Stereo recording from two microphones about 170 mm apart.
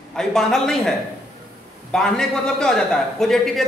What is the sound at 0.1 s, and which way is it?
A man's voice, 5° left (ahead or behind).